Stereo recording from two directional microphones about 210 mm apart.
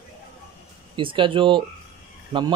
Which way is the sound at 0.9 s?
25° right (ahead or behind).